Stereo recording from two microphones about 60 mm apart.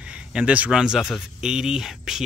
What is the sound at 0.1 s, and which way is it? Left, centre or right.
A man's voice, centre.